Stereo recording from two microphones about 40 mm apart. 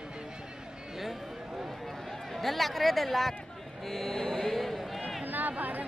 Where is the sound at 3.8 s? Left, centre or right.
Centre.